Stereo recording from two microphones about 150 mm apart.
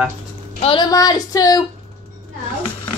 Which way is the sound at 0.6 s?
30° left (ahead or behind).